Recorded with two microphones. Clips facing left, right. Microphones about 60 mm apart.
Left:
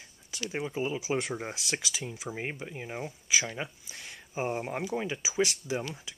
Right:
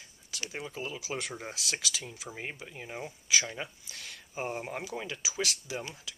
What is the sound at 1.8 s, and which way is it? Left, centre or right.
Speech, centre.